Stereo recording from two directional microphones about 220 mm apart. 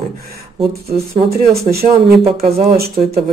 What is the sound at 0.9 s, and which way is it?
Speech, 45° right (ahead or behind).